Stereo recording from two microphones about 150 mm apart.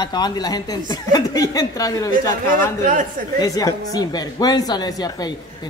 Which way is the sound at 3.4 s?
25° left (ahead or behind).